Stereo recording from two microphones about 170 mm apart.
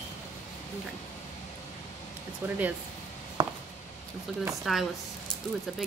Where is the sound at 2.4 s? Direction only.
10° right (ahead or behind).